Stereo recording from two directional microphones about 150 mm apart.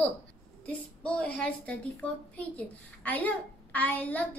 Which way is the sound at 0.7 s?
10° left (ahead or behind).